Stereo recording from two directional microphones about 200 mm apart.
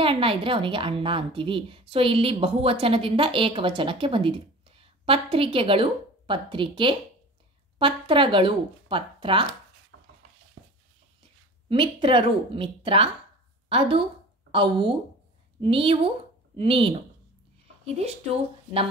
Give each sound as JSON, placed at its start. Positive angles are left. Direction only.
{"t": 0.0, "sound": "a woman's voice", "side_deg": -25}
{"t": 9.9, "sound": "a sound", "side_deg": -70}
{"t": 11.7, "sound": "a woman's voice", "side_deg": -25}